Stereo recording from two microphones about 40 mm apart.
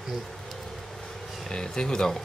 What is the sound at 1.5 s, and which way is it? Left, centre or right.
Speech, centre.